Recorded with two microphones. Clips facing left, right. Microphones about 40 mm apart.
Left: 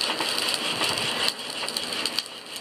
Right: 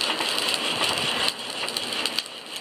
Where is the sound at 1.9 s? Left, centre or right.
Right.